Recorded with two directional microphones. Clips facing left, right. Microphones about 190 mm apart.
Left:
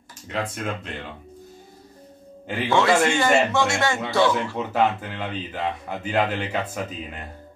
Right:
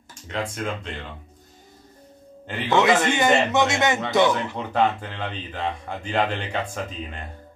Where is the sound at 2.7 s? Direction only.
20° right (ahead or behind).